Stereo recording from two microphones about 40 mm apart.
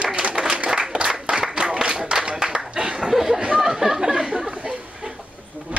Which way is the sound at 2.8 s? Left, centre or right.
Centre.